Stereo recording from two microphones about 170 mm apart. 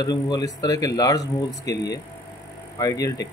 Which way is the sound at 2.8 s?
20° left (ahead or behind).